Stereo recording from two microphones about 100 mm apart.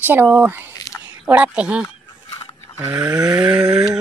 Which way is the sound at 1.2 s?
10° right (ahead or behind).